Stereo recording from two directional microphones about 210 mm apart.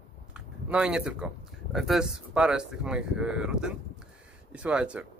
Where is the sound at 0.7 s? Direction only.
5° right (ahead or behind).